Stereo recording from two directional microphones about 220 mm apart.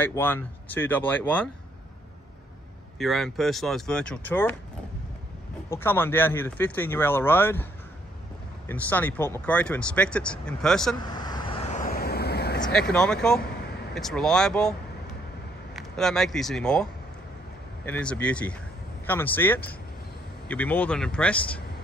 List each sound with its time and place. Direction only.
0.0 s speech: 10° left (ahead or behind)
3.0 s speech: centre (ahead or behind)
5.7 s speech: 10° left (ahead or behind)
8.6 s speech: 10° left (ahead or behind)
11.6 s vehicle: 35° left (ahead or behind)
12.5 s speech: 5° left (ahead or behind)
13.4 s vehicle: 50° left (ahead or behind)
13.9 s speech: centre (ahead or behind)